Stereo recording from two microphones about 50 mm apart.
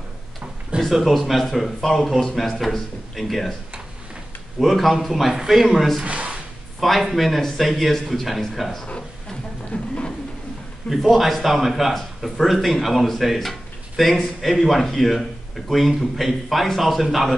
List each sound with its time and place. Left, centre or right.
0.7 s a man's voice: centre
4.6 s a man's voice: centre
6.0 s a sound: right
6.8 s a man's voice: centre
9.7 s a sound: left
10.9 s a man's voice: centre